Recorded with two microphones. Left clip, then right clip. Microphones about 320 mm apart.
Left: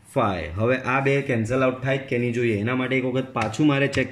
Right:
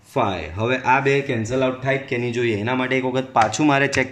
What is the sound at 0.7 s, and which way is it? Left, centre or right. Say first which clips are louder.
Speech: right 4 dB; centre.